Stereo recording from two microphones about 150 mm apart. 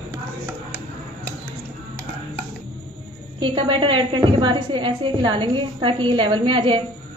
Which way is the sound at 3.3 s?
35° right (ahead or behind).